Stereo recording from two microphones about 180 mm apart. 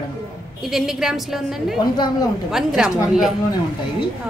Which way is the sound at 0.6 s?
Centre (ahead or behind).